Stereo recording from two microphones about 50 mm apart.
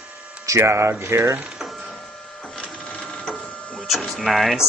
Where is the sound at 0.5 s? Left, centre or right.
Right.